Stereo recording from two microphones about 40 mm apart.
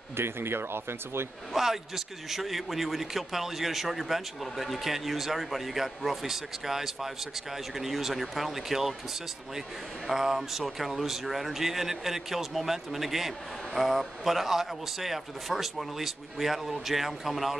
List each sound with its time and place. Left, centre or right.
0.2 s speech: right
1.5 s a man's voice: centre
10.1 s a man's voice: centre